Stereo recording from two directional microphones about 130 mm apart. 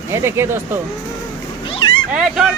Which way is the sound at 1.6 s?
40° left (ahead or behind).